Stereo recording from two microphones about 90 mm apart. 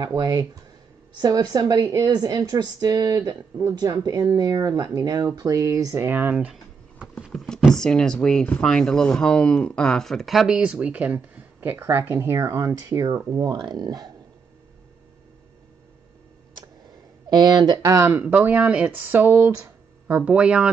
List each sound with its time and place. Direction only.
0.2 s speech: 45° right (ahead or behind)
6.0 s speech: 20° right (ahead or behind)
6.3 s a sound: 10° right (ahead or behind)
7.2 s speech: 5° left (ahead or behind); by 14.1 s 50° right (ahead or behind)
17.3 s speech: 50° right (ahead or behind)
17.8 s speech: 30° right (ahead or behind)
18.2 s speech: 15° right (ahead or behind)